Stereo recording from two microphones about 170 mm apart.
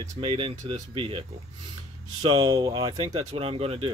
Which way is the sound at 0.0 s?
20° right (ahead or behind).